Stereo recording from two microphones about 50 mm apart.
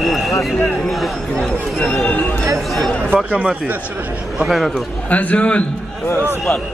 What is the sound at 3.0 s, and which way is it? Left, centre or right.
Speech, right.